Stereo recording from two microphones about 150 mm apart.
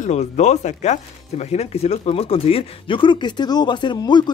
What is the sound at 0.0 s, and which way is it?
Speech, 50° left (ahead or behind).